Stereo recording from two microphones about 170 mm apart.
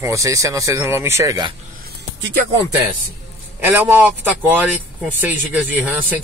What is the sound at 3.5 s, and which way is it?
Speech, 15° right (ahead or behind).